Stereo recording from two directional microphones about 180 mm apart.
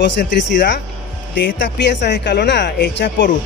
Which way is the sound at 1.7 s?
75° left (ahead or behind).